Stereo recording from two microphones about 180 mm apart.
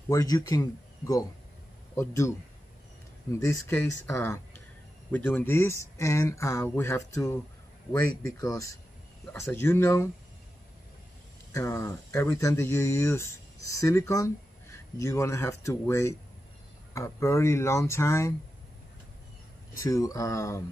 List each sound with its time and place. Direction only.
0.1 s speech: 20° left (ahead or behind)
11.5 s speech: 15° left (ahead or behind)
19.7 s speech: 15° left (ahead or behind)